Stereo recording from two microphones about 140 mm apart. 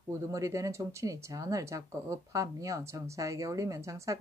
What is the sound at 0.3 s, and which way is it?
Speech, 25° right (ahead or behind).